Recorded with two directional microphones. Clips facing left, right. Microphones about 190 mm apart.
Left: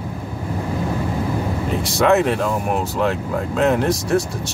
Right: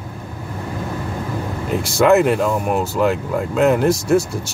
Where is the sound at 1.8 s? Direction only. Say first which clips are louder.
Right 3 dB; centre (ahead or behind).